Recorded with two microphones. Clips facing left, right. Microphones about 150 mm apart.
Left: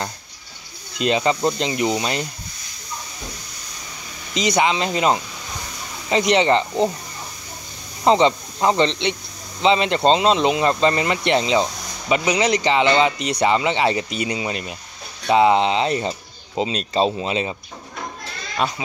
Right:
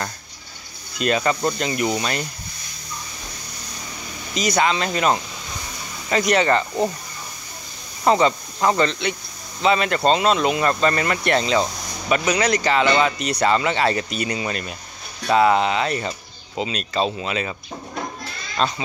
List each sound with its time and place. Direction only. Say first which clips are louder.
0.9 s speech: left 1 dB; 20° left (ahead or behind)
4.3 s speech: left 1 dB; 20° left (ahead or behind)
8.0 s speech: left 2 dB; 20° left (ahead or behind)
18.6 s speech: right 1 dB; 10° left (ahead or behind)